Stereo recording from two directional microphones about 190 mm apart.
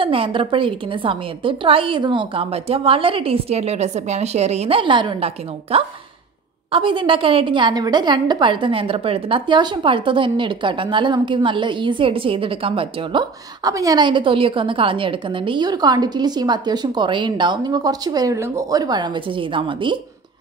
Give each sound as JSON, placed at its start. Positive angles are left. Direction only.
{"t": 0.0, "sound": "a woman's voice", "side_deg": -30}